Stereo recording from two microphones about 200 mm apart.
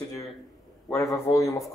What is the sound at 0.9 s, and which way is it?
Speech, 15° left (ahead or behind).